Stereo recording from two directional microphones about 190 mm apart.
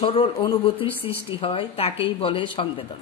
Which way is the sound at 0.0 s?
25° left (ahead or behind).